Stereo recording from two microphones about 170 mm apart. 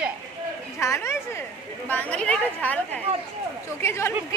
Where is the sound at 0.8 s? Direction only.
15° left (ahead or behind).